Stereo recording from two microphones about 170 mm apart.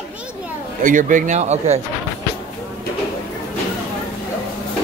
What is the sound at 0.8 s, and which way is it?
Speech, 50° right (ahead or behind).